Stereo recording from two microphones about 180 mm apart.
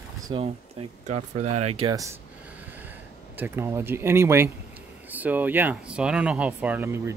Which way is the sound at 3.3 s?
10° right (ahead or behind).